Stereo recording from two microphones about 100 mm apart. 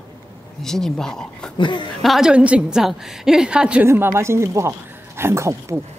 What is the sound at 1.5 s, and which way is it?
Speech, 50° left (ahead or behind).